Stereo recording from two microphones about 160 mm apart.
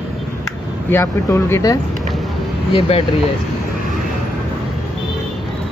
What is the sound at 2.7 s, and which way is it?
Speech, 35° left (ahead or behind).